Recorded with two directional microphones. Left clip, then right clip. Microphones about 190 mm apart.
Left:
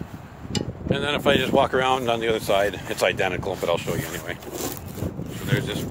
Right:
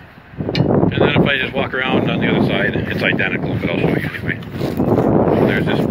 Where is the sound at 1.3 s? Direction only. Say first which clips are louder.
Right 1 dB; 20° left (ahead or behind).